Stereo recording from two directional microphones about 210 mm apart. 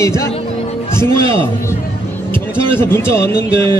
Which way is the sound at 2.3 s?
25° right (ahead or behind).